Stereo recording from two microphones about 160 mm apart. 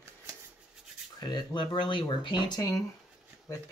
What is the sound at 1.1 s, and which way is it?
Speech, 25° left (ahead or behind).